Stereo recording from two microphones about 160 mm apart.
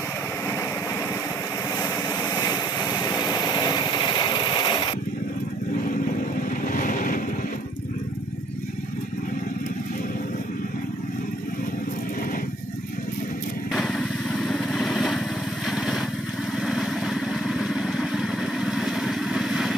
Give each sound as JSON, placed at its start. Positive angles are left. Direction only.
{"t": 1.8, "sound": "vehicle", "side_deg": 20}
{"t": 6.7, "sound": "vehicle", "side_deg": 55}
{"t": 13.7, "sound": "vehicle", "side_deg": 0}